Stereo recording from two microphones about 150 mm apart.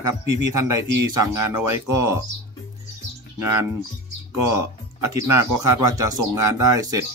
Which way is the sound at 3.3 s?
20° right (ahead or behind).